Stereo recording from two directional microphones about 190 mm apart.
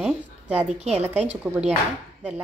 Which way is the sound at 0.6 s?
35° right (ahead or behind).